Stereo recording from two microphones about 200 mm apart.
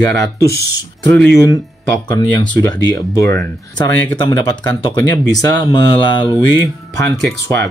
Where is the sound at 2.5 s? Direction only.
15° left (ahead or behind).